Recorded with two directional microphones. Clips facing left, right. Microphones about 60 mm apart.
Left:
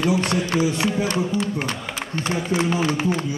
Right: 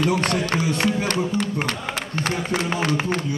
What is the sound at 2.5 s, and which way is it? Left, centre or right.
Speech, right.